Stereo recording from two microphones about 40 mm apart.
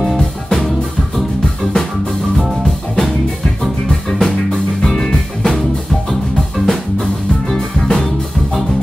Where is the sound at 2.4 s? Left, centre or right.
Centre.